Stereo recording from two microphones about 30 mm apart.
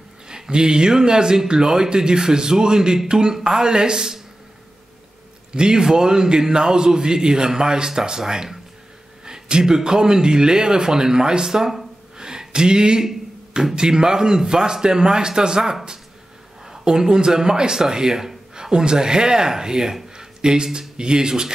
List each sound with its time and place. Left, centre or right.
0.3 s speech: right
5.5 s speech: right
16.8 s speech: right
20.2 s a sound: right
21.0 s speech: right